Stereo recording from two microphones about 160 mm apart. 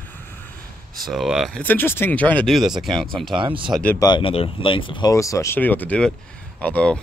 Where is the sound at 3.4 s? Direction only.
30° right (ahead or behind).